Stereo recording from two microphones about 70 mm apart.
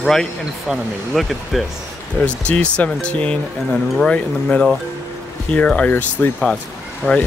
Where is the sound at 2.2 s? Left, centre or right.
Centre.